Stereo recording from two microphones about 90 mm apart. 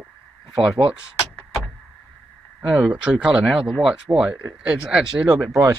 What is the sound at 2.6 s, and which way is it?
Speech, 10° right (ahead or behind).